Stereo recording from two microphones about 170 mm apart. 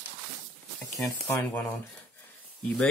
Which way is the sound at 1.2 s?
15° left (ahead or behind).